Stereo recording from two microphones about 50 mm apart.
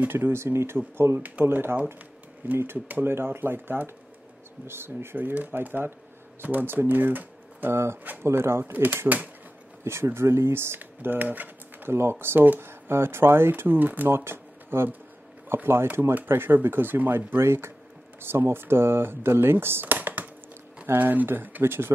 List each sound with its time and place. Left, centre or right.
0.0 s speech: right
2.4 s speech: right
5.1 s speech: right
7.7 s speech: right
9.8 s speech: right
11.9 s speech: right
14.0 s speech: right
17.4 s speech: right
19.9 s a sound: right
20.8 s speech: right